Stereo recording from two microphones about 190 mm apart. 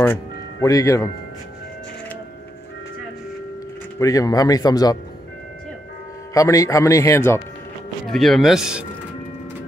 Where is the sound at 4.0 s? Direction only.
20° left (ahead or behind).